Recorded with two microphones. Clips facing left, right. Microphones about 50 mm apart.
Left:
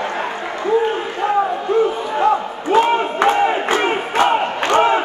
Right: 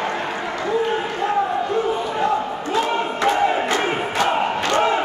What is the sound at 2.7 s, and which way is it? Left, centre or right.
Battle cry, left.